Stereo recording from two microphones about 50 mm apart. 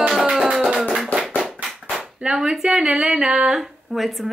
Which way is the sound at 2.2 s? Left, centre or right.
Centre.